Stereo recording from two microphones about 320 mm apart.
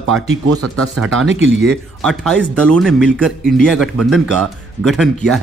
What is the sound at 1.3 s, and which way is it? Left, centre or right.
Speech, right.